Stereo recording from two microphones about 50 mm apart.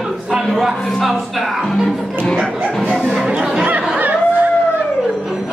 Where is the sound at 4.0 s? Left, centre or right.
Right.